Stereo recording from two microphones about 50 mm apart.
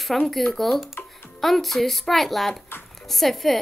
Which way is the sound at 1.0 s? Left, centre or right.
Left.